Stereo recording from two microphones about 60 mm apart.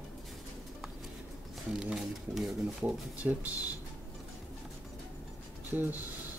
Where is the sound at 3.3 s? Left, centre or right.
Right.